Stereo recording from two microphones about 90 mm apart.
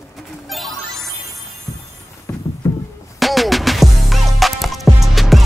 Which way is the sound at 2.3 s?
30° left (ahead or behind).